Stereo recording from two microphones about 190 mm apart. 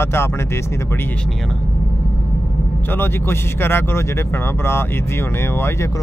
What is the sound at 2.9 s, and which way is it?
Speech, 10° left (ahead or behind).